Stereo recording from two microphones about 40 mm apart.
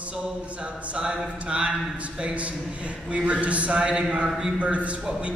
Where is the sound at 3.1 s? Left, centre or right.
Right.